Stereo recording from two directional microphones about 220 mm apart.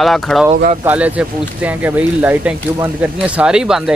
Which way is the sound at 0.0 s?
Centre (ahead or behind).